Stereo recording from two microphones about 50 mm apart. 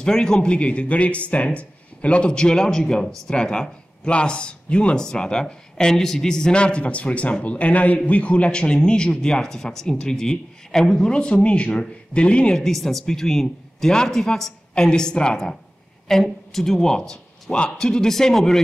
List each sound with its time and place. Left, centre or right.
0.0 s a man's voice: centre
12.5 s a man's voice: centre